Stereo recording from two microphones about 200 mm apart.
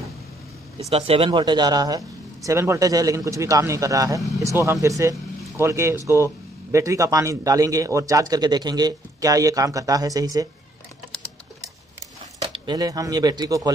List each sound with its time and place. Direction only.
0.8 s a man's voice: 30° right (ahead or behind)
12.4 s speech: 25° right (ahead or behind)